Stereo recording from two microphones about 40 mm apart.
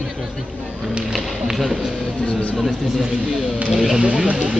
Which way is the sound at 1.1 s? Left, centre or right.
Centre.